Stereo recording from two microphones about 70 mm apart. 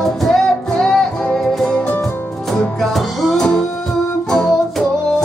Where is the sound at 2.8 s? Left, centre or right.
Centre.